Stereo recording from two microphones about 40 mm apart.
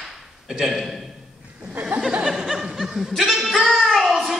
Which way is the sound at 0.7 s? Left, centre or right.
Centre.